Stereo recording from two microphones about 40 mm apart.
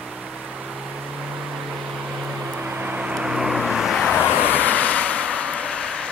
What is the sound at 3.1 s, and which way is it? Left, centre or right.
Vehicle, centre.